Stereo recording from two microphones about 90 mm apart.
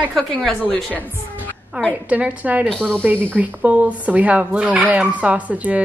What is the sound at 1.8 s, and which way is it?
A woman's voice, 20° right (ahead or behind).